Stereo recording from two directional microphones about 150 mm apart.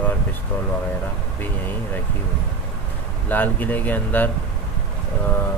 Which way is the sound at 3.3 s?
10° left (ahead or behind).